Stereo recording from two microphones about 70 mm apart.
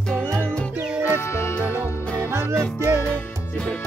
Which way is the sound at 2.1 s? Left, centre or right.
Right.